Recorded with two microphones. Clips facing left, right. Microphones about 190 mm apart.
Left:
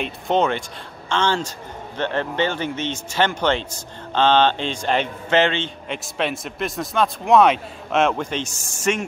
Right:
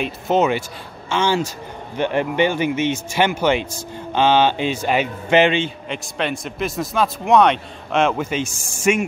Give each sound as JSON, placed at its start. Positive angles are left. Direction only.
{"t": 0.0, "sound": "speech", "side_deg": -5}
{"t": 5.9, "sound": "speech", "side_deg": 0}